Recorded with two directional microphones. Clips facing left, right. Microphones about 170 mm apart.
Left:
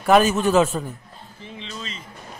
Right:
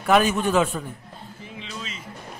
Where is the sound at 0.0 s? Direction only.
40° left (ahead or behind).